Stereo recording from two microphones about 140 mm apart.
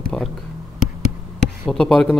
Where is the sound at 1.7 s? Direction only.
5° left (ahead or behind).